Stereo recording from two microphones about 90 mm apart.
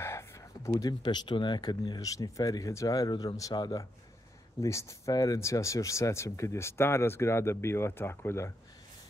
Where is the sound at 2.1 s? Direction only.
40° left (ahead or behind).